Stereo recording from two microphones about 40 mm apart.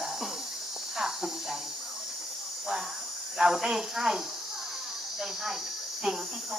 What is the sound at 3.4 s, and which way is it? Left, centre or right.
Speech, centre.